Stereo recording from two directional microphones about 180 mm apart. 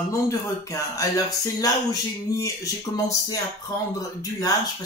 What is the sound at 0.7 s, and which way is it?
Speech, 20° left (ahead or behind).